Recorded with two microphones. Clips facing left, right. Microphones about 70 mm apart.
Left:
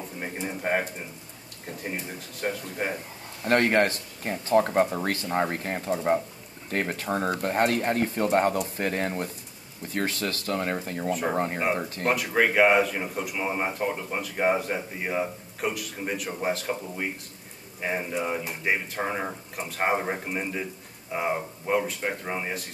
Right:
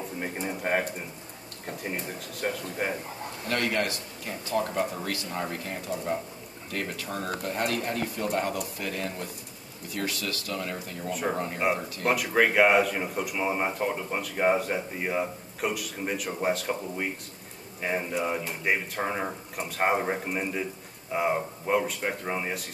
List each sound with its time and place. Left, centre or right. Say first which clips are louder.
0.2 s speech: left 1 dB; centre
3.4 s speech: left 7 dB; left
11.1 s speech: left 2 dB; centre
11.3 s speech: left 2 dB; left
12.1 s speech: even; centre